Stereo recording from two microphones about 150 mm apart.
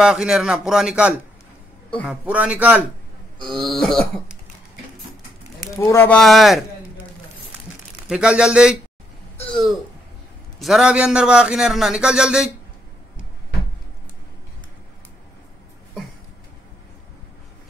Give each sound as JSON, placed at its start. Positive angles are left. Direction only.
{"t": 0.0, "sound": "a man's voice", "side_deg": -5}
{"t": 3.4, "sound": "speech", "side_deg": 0}
{"t": 5.8, "sound": "speech", "side_deg": 20}
{"t": 6.0, "sound": "speech", "side_deg": 0}
{"t": 8.1, "sound": "speech", "side_deg": -5}
{"t": 10.6, "sound": "speech", "side_deg": -5}